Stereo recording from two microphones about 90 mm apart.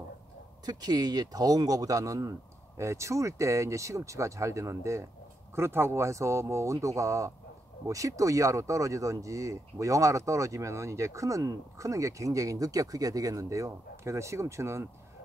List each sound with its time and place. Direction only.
0.7 s speech: 45° right (ahead or behind)